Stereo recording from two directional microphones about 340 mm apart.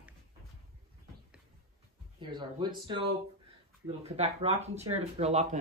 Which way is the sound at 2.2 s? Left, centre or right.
Centre.